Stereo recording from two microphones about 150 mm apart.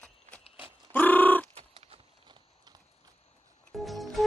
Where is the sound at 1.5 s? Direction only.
40° right (ahead or behind).